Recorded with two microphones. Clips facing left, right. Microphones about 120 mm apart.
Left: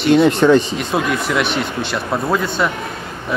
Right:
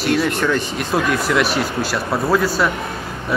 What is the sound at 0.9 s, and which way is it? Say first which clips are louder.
Speech: right 3 dB; centre (ahead or behind).